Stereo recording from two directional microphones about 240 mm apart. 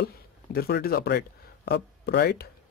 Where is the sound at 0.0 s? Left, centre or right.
Left.